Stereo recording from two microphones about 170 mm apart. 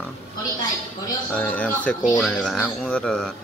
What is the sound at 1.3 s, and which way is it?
Speech, 10° left (ahead or behind).